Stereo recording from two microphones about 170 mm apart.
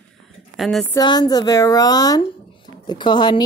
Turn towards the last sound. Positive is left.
turn(degrees=25)  # may be behind; listen again after turning